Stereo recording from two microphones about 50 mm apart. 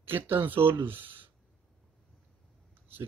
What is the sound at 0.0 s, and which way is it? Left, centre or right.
Speech, right.